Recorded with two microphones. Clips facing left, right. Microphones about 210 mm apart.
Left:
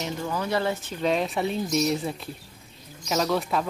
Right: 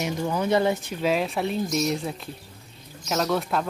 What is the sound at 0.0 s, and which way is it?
Speech, 15° right (ahead or behind).